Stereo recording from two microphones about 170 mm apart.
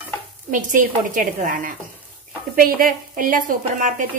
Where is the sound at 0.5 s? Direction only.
50° right (ahead or behind).